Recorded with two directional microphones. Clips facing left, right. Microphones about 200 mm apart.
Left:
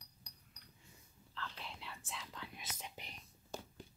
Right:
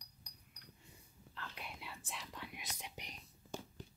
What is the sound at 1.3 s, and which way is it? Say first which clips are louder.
Whispering: left 2 dB; 10° right (ahead or behind).